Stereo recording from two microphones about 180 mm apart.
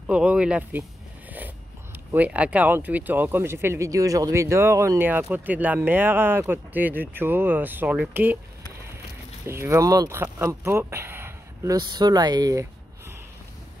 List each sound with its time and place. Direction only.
0.0 s speech: 5° right (ahead or behind)
2.1 s speech: 10° right (ahead or behind)
9.5 s speech: 15° right (ahead or behind)